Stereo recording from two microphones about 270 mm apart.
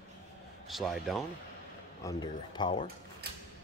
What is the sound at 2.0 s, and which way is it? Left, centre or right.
Speech, centre.